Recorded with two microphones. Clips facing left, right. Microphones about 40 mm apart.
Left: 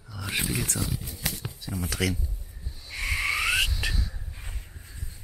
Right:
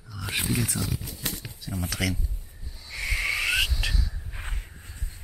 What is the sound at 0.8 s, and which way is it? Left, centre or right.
Speech, centre.